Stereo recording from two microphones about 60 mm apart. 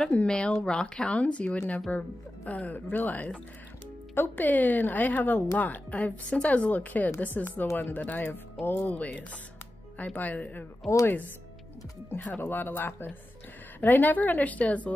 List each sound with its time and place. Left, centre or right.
0.1 s speech: centre; by 8.9 s left
8.9 s speech: left
12.4 s speech: left